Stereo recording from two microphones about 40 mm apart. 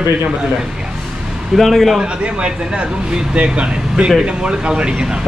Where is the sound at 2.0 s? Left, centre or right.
Right.